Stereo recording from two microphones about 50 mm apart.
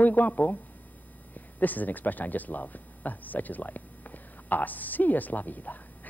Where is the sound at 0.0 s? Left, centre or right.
Left.